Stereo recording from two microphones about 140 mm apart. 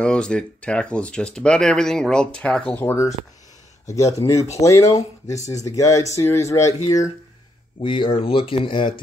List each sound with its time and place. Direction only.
0.0 s speech: 5° left (ahead or behind); by 7.1 s 25° left (ahead or behind)
7.8 s speech: 40° left (ahead or behind)